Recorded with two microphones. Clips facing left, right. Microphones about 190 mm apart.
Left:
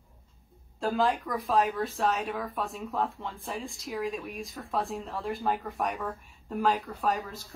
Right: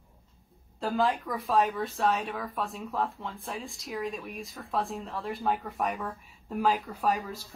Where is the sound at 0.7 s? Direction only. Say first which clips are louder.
Left 1 dB; centre (ahead or behind).